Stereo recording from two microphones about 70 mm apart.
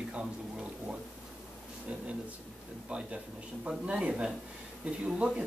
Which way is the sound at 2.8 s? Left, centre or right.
Centre.